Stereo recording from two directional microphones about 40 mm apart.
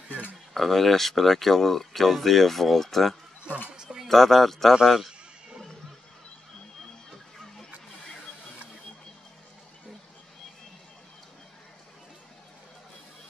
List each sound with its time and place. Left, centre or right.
0.6 s speech: centre
3.7 s a sound: centre
4.1 s speech: centre